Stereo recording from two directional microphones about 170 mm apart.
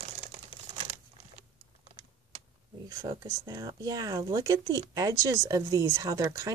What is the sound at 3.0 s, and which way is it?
Speech, 20° right (ahead or behind).